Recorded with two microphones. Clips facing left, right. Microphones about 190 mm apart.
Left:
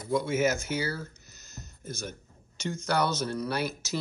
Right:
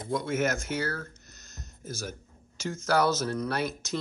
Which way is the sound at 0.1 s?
Centre (ahead or behind).